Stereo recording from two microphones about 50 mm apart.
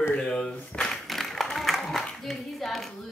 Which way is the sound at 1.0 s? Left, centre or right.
Centre.